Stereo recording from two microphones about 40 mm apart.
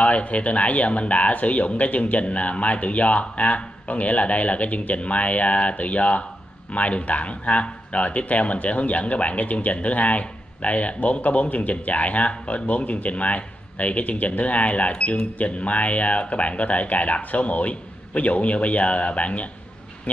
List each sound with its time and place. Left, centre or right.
0.0 s speech: left